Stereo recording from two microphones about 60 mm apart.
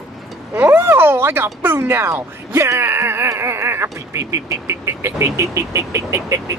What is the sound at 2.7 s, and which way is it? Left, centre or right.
A child's voice, right.